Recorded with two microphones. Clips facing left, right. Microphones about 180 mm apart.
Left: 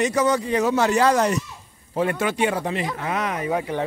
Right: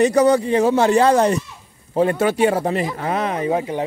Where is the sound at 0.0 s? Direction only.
35° right (ahead or behind).